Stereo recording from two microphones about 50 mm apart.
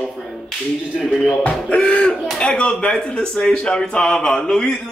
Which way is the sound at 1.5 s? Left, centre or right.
Left.